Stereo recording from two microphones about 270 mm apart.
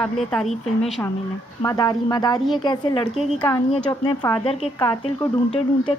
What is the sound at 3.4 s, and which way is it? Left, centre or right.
Speech, centre.